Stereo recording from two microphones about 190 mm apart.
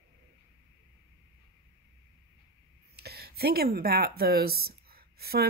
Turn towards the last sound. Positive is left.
turn(degrees=-55)  # may be behind; listen again after turning